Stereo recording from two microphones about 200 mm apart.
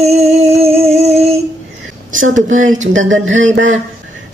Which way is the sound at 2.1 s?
75° right (ahead or behind).